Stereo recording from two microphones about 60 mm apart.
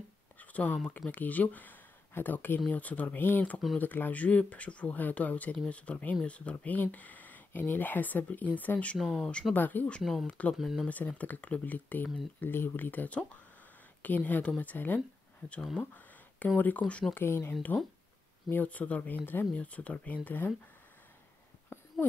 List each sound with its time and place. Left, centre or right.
0.4 s a sound: left
1.1 s speech: left
8.9 s speech: centre
9.2 s speech: centre
9.5 s speech: left
10.6 s speech: centre
11.1 s speech: left
15.8 s a sound: left
16.5 s speech: left
17.1 s speech: left
18.5 s speech: left
21.7 s a sound: left